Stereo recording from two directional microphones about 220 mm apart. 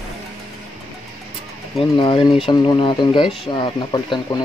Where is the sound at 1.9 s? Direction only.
20° left (ahead or behind).